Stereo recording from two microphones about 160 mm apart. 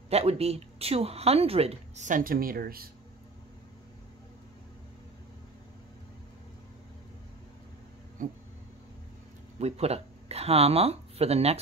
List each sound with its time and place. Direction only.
0.1 s speech: 40° right (ahead or behind); by 2.9 s 70° right (ahead or behind)
8.2 s a sound: 55° right (ahead or behind)
9.6 s speech: 40° right (ahead or behind)